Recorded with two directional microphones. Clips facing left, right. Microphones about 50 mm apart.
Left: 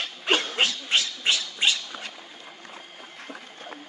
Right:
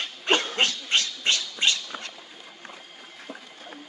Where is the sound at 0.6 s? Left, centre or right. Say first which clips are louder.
Even; centre.